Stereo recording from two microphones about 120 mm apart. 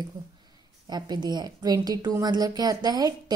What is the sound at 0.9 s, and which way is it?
A woman's voice, 35° right (ahead or behind).